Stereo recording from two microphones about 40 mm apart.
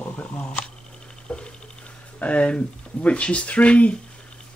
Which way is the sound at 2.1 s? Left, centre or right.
Left.